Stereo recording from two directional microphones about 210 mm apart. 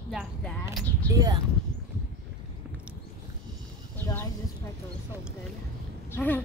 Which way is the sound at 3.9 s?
15° left (ahead or behind).